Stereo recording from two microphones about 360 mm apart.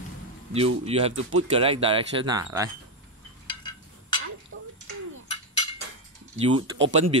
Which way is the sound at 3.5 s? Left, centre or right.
Centre.